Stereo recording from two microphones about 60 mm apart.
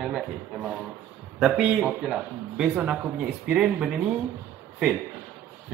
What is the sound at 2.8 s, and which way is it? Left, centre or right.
Speech, right.